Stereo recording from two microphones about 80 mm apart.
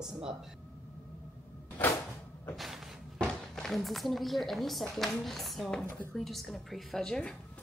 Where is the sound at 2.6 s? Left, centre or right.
Centre.